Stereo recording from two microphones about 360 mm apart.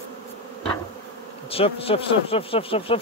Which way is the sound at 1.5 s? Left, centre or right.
Centre.